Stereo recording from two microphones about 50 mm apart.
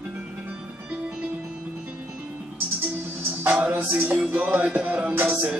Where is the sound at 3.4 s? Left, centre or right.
Right.